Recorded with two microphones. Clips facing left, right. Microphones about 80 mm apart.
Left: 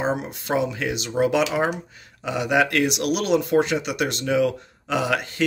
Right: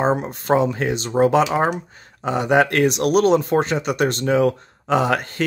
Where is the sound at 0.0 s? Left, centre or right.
Right.